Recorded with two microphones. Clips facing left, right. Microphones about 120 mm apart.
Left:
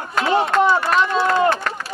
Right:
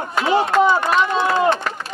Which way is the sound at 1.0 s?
20° right (ahead or behind).